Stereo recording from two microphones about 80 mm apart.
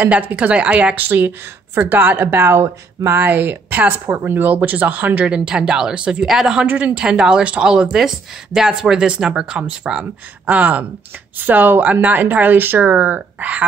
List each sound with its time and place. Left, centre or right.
0.0 s speech: centre; by 3.2 s right
3.2 s speech: right; by 6.6 s centre
6.6 s speech: centre